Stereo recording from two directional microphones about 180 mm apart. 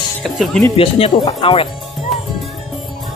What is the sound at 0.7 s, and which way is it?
Speech, 30° left (ahead or behind).